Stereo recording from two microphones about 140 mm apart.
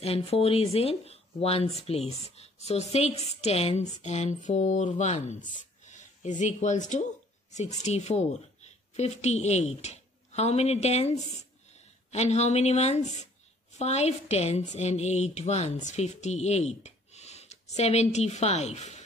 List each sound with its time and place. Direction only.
0.0 s a woman's voice: 45° left (ahead or behind)